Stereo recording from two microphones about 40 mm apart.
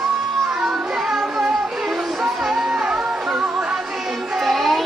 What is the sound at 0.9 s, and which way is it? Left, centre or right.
Music, centre.